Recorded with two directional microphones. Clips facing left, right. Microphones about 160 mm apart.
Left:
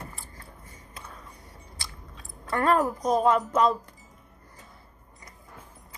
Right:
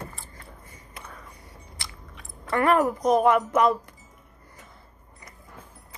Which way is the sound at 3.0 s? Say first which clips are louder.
Right 3 dB; 15° right (ahead or behind).